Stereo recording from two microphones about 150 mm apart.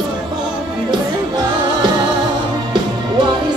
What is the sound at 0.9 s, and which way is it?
Music, 30° right (ahead or behind).